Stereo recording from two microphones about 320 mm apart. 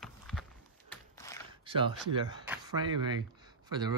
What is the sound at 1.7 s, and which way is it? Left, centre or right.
Speech, centre.